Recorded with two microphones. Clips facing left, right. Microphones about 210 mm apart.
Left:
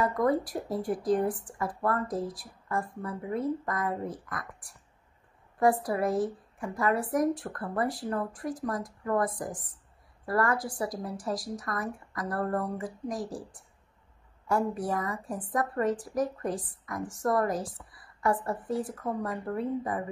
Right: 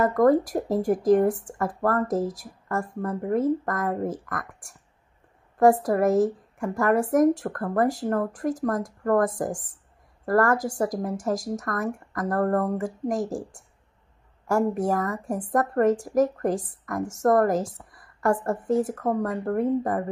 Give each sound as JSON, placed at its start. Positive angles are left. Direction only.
{"t": 0.0, "sound": "a woman's voice", "side_deg": -45}
{"t": 14.8, "sound": "a woman's voice", "side_deg": -45}